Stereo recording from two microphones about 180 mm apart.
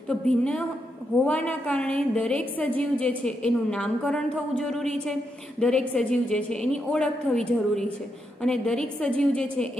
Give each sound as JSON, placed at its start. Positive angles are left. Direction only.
{"t": 0.1, "sound": "a woman's voice", "side_deg": 5}